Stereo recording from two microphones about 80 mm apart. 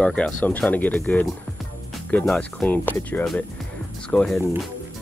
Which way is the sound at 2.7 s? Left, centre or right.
Left.